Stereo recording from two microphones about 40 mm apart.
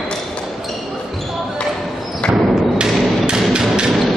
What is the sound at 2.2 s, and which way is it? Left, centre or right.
Thump, left.